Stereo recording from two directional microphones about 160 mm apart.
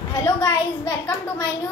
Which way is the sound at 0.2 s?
25° left (ahead or behind).